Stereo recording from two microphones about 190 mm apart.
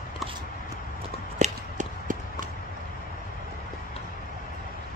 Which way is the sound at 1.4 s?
40° right (ahead or behind).